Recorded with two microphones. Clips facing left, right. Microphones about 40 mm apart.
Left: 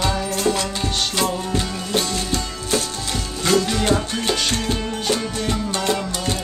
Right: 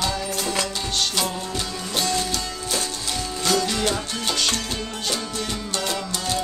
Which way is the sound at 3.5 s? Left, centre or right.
Centre.